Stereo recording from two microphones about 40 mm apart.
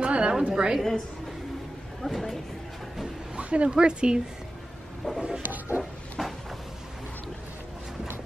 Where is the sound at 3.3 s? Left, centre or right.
Right.